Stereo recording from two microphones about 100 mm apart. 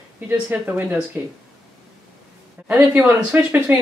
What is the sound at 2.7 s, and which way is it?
Speech, 15° right (ahead or behind).